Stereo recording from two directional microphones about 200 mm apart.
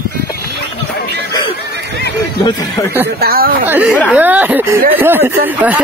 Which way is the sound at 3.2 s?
50° right (ahead or behind).